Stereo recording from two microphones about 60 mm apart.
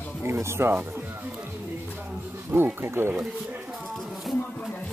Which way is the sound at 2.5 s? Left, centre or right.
Right.